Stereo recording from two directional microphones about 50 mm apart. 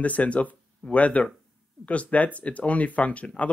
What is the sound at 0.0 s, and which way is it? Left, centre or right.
Speech, left.